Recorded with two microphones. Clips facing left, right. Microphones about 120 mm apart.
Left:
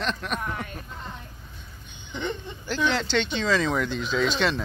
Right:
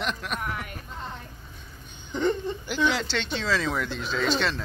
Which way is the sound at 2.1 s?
35° right (ahead or behind).